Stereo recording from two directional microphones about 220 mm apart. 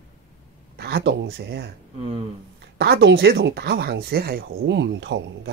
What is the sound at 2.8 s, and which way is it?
Speech, 50° right (ahead or behind).